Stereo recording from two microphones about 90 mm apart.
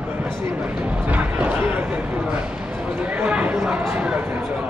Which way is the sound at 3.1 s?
15° right (ahead or behind).